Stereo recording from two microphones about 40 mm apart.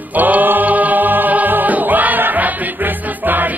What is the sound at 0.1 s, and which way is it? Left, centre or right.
Music, right.